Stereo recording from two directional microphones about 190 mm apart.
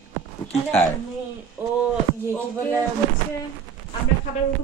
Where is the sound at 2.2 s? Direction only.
10° left (ahead or behind).